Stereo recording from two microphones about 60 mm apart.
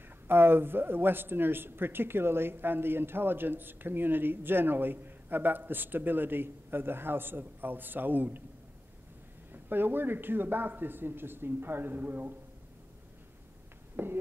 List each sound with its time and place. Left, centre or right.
0.3 s speech: right
9.5 s a man's voice: right
14.0 s speech: right